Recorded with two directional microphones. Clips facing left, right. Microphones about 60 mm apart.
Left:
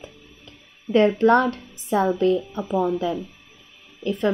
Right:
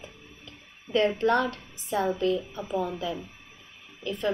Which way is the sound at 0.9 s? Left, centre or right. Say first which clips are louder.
Left 7 dB; left.